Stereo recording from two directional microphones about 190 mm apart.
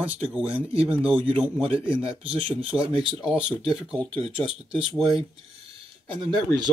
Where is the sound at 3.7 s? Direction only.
5° right (ahead or behind).